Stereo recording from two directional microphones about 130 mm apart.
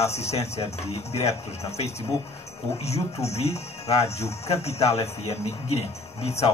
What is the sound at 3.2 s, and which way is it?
Speech, 55° left (ahead or behind).